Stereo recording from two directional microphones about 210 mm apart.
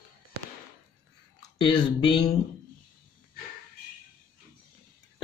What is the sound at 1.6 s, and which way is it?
Speech, 20° left (ahead or behind).